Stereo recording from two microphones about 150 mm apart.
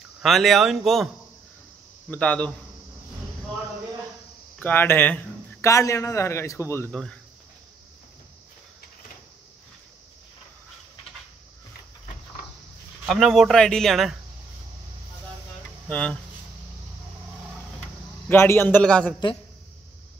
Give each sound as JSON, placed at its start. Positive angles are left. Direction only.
{"t": 0.2, "sound": "speech", "side_deg": 0}
{"t": 2.0, "sound": "a man's voice", "side_deg": 10}
{"t": 4.6, "sound": "a man's voice", "side_deg": 15}
{"t": 6.9, "sound": "speech", "side_deg": 5}
{"t": 13.0, "sound": "speech", "side_deg": 0}
{"t": 15.9, "sound": "a man's voice", "side_deg": 5}
{"t": 18.3, "sound": "a man's voice", "side_deg": 15}